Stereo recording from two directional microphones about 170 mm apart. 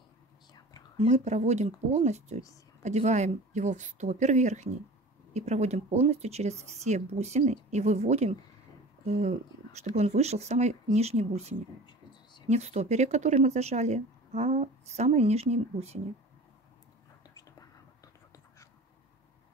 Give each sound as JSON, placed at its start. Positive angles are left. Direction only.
{"t": 0.9, "sound": "speech", "side_deg": -40}
{"t": 17.4, "sound": "whispering", "side_deg": 20}